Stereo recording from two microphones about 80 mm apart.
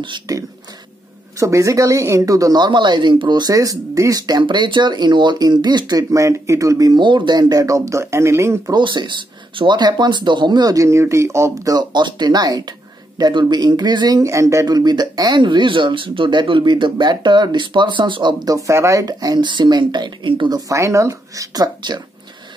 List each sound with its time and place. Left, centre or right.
0.3 s speech: right
2.6 s speech: right
3.5 s speech: right
4.2 s speech: right
6.1 s speech: right
6.9 s speech: right
8.7 s speech: right
10.8 s speech: right
13.2 s speech: right
14.2 s speech: right
14.7 s speech: right
18.5 s speech: right
19.0 s speech: right
20.5 s speech: right